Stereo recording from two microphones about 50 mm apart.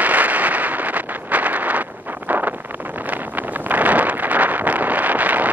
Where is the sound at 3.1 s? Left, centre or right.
Right.